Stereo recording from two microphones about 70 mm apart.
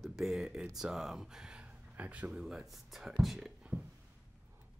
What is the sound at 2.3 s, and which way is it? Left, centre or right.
Speech, centre.